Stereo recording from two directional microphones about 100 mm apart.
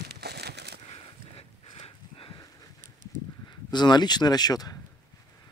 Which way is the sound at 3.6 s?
45° left (ahead or behind).